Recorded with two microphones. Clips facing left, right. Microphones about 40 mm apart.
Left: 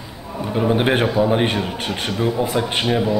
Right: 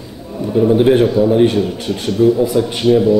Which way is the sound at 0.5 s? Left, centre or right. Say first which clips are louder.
Right 7 dB; left.